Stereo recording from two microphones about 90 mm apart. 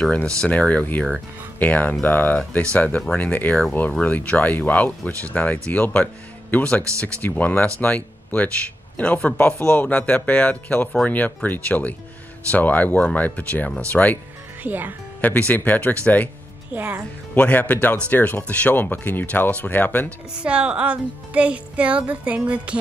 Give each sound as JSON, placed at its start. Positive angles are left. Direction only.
{"t": 0.0, "sound": "speech", "side_deg": 10}
{"t": 14.6, "sound": "speech", "side_deg": -20}
{"t": 15.2, "sound": "speech", "side_deg": 15}
{"t": 16.7, "sound": "speech", "side_deg": -15}
{"t": 17.4, "sound": "speech", "side_deg": 15}
{"t": 20.3, "sound": "speech", "side_deg": -10}